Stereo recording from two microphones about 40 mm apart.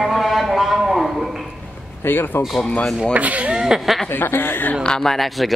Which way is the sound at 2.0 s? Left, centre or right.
Left.